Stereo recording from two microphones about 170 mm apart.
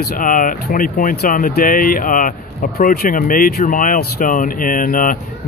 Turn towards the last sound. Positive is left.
turn(degrees=55)  # may be behind; listen again after turning